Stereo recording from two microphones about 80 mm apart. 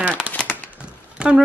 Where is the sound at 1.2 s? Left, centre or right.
Centre.